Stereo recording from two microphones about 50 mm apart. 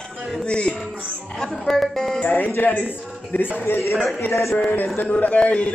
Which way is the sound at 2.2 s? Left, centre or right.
Left.